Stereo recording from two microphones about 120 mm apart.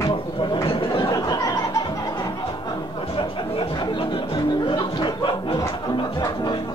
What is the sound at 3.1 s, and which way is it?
Music, 45° left (ahead or behind).